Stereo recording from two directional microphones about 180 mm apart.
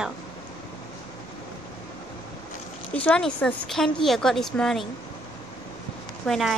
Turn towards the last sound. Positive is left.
turn(degrees=0)  # may be behind; listen again after turning